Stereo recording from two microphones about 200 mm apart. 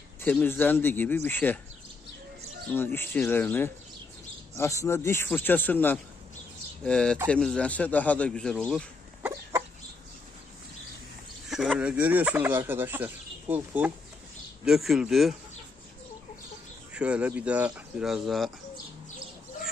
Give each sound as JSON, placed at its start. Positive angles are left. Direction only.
{"t": 0.2, "sound": "speech", "side_deg": 10}
{"t": 2.7, "sound": "a man's voice", "side_deg": 10}
{"t": 11.4, "sound": "a man's voice", "side_deg": 0}
{"t": 16.9, "sound": "a man's voice", "side_deg": -5}